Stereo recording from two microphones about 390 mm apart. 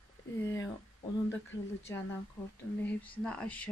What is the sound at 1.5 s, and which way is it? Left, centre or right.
Speech, left.